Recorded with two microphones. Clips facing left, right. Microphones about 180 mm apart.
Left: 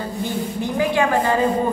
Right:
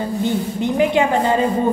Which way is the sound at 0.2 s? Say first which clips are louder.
Right 3 dB; 20° right (ahead or behind).